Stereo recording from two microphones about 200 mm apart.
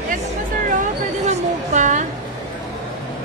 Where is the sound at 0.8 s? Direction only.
35° right (ahead or behind).